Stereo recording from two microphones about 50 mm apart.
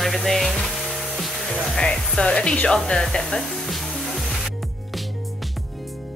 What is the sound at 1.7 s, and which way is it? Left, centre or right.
Speech, centre.